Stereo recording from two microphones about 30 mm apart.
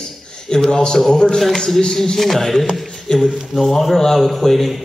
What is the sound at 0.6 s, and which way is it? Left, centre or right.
A man's voice, left.